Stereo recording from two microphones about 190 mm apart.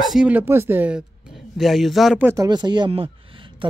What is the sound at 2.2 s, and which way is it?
Speech, 20° right (ahead or behind).